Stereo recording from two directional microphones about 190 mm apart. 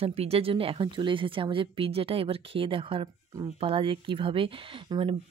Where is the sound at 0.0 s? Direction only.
30° right (ahead or behind).